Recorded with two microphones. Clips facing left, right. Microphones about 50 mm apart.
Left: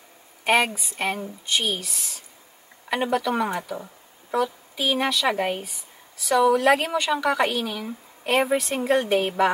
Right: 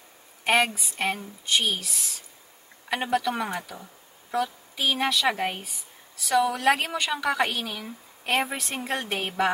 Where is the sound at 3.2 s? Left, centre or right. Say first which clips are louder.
Left 4 dB; centre.